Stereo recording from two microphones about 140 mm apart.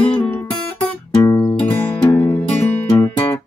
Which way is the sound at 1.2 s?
25° left (ahead or behind).